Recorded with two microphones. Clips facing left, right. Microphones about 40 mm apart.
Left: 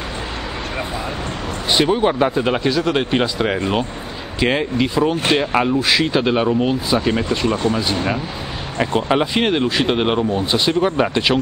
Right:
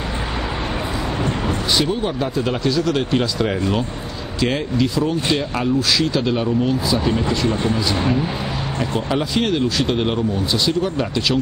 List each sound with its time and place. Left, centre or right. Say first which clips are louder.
1.7 s speech: left 6 dB; left
7.7 s speech: even; centre
8.7 s speech: left 5 dB; left